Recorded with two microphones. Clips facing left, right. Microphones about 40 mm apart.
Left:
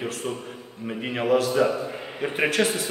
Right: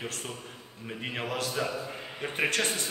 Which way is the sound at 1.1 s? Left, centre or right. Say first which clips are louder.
Left 11 dB; centre.